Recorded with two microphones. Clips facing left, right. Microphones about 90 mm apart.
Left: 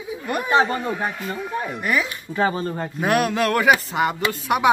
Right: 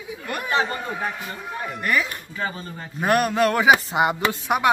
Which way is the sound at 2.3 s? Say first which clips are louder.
Left 8 dB; 50° left (ahead or behind).